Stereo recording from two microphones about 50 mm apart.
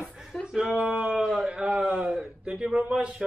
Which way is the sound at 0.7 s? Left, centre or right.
Right.